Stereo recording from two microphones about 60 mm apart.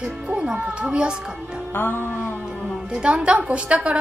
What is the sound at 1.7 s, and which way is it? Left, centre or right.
Music, left.